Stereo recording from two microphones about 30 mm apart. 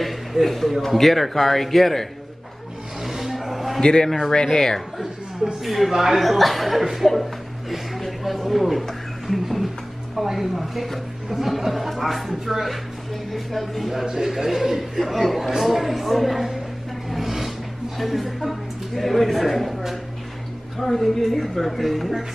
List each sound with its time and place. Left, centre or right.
0.0 s a sound: centre
0.8 s speech: centre
3.0 s music: centre
3.8 s speech: left
5.0 s speech: right
5.6 s speech: centre
14.0 s a man's voice: centre
17.1 s a sound: centre
17.9 s speech: centre